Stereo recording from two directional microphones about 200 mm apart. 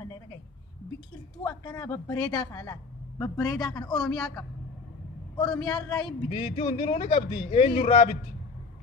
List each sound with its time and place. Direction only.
1.4 s a woman's voice: 15° left (ahead or behind)
4.0 s a woman's voice: 5° left (ahead or behind)
5.4 s a woman's voice: 5° left (ahead or behind)
5.7 s speech: 20° left (ahead or behind)